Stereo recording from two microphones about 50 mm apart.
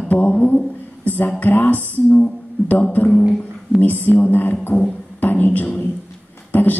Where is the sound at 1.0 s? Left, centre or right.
Left.